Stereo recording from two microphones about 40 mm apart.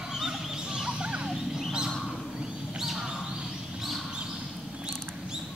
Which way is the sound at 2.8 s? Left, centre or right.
Centre.